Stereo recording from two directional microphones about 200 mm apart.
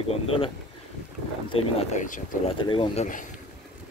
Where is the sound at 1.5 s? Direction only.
30° left (ahead or behind).